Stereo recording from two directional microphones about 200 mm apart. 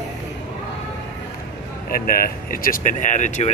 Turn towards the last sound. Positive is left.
turn(degrees=40)  # may be behind; listen again after turning